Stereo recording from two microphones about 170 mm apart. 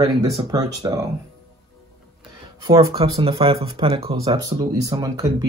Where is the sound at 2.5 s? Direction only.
25° right (ahead or behind).